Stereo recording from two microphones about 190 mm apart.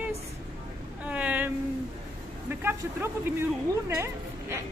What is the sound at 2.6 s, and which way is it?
A woman's voice, 10° right (ahead or behind).